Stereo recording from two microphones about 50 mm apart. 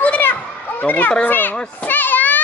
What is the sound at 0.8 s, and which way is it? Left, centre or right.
Speech, left.